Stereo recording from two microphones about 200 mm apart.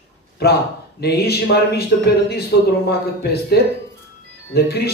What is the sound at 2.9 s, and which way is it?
A man's voice, 50° left (ahead or behind).